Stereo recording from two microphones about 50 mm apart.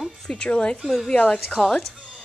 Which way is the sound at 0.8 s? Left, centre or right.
Centre.